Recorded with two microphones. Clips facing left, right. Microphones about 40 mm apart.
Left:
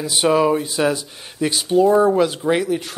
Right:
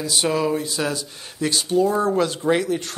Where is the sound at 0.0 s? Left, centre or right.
Centre.